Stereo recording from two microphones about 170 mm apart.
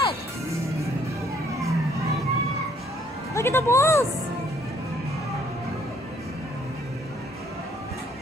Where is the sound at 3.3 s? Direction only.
15° left (ahead or behind).